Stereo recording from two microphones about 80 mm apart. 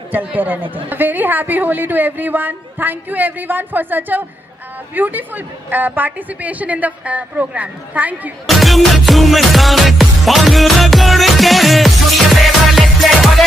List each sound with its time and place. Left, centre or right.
0.1 s a woman's voice: right
8.5 s music: centre